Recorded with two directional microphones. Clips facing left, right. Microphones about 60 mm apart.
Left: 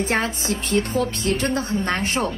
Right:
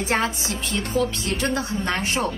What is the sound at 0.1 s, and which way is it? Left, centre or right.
Speech, left.